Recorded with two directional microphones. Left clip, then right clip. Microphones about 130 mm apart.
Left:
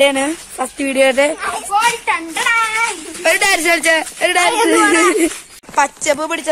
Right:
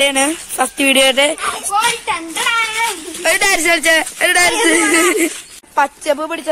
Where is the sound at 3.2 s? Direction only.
Centre (ahead or behind).